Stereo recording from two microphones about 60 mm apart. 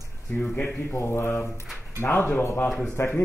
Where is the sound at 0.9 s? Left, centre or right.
Left.